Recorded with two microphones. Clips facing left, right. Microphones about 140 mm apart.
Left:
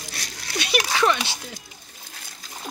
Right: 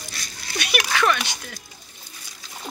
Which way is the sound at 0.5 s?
30° left (ahead or behind).